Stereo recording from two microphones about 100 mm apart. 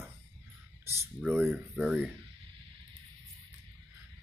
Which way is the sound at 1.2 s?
15° right (ahead or behind).